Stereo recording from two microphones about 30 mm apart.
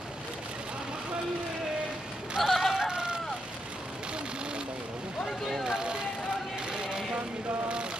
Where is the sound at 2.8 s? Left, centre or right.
Right.